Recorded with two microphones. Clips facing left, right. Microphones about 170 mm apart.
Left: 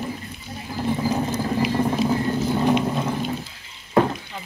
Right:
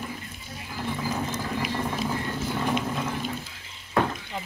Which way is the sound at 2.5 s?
30° left (ahead or behind).